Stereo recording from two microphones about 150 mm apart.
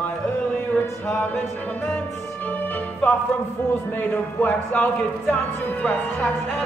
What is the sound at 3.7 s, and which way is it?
Speech, 10° left (ahead or behind).